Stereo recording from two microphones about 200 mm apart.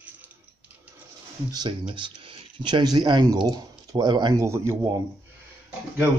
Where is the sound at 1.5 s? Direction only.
20° right (ahead or behind).